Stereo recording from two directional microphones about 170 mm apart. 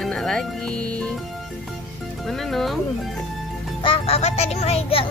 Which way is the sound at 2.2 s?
Centre (ahead or behind).